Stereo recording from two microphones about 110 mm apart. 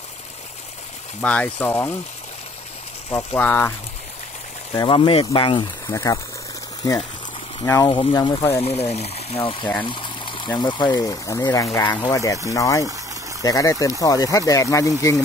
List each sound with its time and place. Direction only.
1.2 s speech: 10° left (ahead or behind)
3.1 s speech: 20° left (ahead or behind)
4.8 s speech: 50° left (ahead or behind)
5.9 s speech: 25° left (ahead or behind)
7.6 s speech: 30° left (ahead or behind)
7.9 s speech: 45° left (ahead or behind)
8.6 s speech: 75° left (ahead or behind); by 9.7 s 55° left (ahead or behind)
9.8 s water: 45° left (ahead or behind)
10.6 s speech: 40° left (ahead or behind)